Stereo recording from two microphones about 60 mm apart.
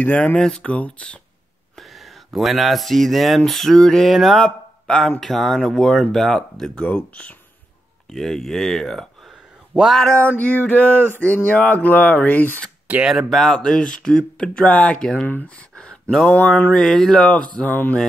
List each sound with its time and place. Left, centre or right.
0.0 s speech: left
1.8 s speech: centre
6.8 s speech: left
8.1 s speech: centre
9.9 s speech: centre
10.3 s speech: left
13.3 s speech: centre
13.6 s speech: centre
15.2 s speech: left
15.7 s a sound: centre
16.3 s speech: left
16.7 s speech: centre
17.6 s speech: left